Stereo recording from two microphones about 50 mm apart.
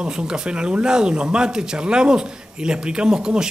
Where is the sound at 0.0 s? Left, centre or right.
Centre.